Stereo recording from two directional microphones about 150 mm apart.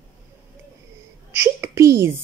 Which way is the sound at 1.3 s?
15° right (ahead or behind).